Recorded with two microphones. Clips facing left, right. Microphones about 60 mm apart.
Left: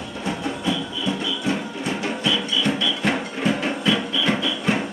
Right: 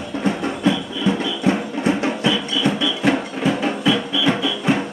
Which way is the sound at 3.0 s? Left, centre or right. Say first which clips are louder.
Right 4 dB; centre.